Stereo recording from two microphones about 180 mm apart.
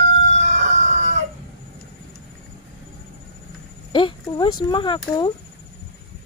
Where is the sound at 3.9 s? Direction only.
25° left (ahead or behind).